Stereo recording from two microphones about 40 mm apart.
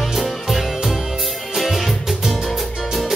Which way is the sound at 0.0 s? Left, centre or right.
Centre.